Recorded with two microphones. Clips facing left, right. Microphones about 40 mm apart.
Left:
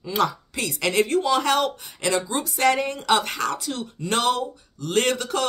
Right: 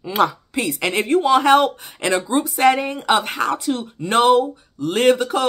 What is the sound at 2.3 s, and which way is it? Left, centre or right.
Speech, centre.